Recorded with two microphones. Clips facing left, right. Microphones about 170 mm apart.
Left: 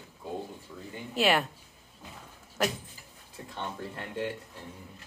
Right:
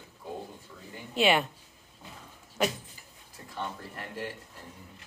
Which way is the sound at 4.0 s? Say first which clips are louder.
Left 4 dB; 25° left (ahead or behind).